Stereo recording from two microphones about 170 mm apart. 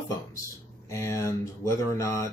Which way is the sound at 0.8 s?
15° left (ahead or behind).